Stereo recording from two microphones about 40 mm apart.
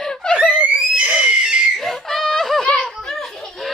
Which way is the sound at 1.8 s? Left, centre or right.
Centre.